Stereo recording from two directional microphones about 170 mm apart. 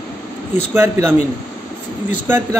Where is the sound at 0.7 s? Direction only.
15° right (ahead or behind).